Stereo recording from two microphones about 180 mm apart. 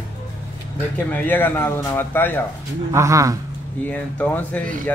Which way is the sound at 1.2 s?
10° left (ahead or behind).